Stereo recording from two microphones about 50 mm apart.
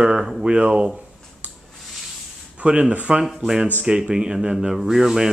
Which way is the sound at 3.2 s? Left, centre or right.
Centre.